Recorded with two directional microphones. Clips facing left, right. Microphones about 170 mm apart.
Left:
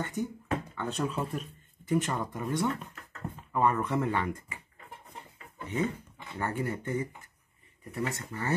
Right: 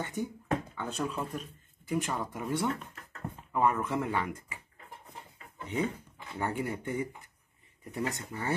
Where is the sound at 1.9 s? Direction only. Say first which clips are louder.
Left 3 dB; centre (ahead or behind).